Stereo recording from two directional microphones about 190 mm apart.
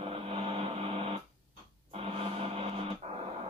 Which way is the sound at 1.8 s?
30° right (ahead or behind).